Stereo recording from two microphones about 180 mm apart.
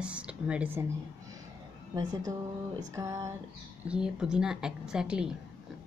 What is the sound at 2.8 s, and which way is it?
Speech, 15° right (ahead or behind).